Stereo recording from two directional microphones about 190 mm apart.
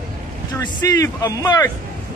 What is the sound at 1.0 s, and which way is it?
Speech, 15° left (ahead or behind).